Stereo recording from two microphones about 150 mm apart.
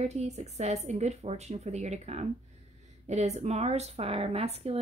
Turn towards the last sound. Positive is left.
turn(degrees=-45)  # may be behind; listen again after turning